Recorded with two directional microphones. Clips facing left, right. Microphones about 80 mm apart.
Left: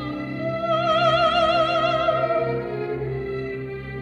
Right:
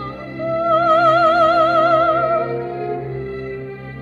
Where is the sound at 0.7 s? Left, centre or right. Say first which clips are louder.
Right 6 dB; right.